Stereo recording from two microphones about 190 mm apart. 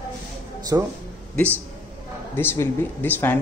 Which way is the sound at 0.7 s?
15° right (ahead or behind).